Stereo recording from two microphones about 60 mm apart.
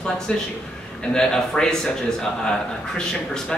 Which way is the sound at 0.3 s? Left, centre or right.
Centre.